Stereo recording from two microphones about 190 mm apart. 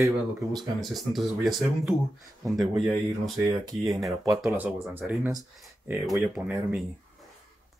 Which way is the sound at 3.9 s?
Centre (ahead or behind).